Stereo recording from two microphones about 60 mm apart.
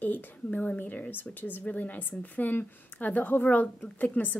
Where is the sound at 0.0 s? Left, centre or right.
Left.